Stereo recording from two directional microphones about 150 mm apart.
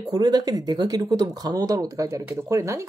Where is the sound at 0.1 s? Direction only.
30° right (ahead or behind).